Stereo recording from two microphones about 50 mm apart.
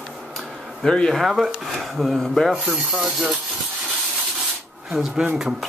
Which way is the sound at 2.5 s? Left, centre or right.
Centre.